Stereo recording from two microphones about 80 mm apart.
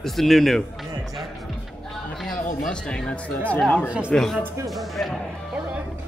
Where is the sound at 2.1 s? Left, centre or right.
Centre.